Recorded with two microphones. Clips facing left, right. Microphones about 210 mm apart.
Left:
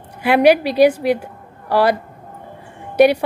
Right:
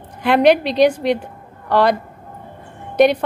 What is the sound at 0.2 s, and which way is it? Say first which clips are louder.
Speech: left 1 dB; 10° left (ahead or behind).